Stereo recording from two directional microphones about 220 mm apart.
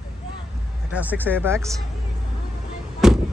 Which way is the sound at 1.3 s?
10° right (ahead or behind).